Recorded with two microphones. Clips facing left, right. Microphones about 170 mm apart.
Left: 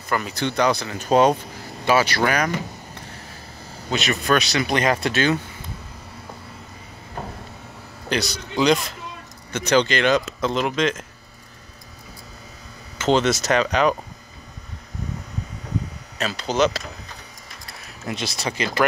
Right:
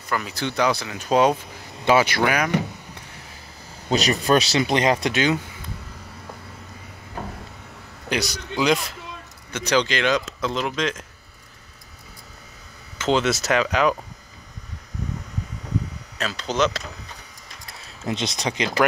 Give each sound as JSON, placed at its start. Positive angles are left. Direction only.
{"t": 0.1, "sound": "speech", "side_deg": 0}
{"t": 1.9, "sound": "speech", "side_deg": -20}
{"t": 3.9, "sound": "speech", "side_deg": -35}
{"t": 8.1, "sound": "speech", "side_deg": -10}
{"t": 9.5, "sound": "speech", "side_deg": 0}
{"t": 12.9, "sound": "speech", "side_deg": 0}
{"t": 16.2, "sound": "speech", "side_deg": 5}
{"t": 18.0, "sound": "speech", "side_deg": -20}